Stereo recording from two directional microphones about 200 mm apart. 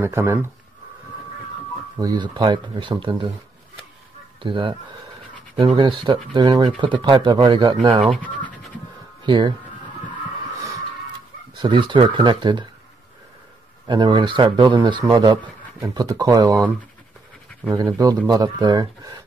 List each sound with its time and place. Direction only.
0.0 s speech: 10° right (ahead or behind)
2.0 s speech: 20° right (ahead or behind)
4.4 s speech: 25° right (ahead or behind)
8.0 s speech: 5° left (ahead or behind)
9.2 s speech: 20° right (ahead or behind)
11.5 s speech: 25° right (ahead or behind)
13.8 s speech: 25° right (ahead or behind)